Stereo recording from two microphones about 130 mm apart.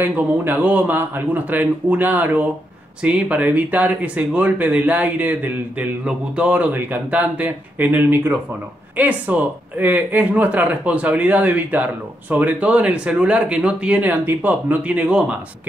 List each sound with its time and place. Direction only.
0.0 s speech: 15° right (ahead or behind)